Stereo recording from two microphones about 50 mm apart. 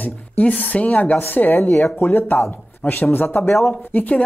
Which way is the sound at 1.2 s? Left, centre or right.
Left.